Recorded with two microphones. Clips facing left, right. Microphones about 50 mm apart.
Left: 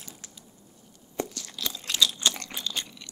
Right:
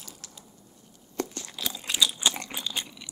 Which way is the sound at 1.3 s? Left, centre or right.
Centre.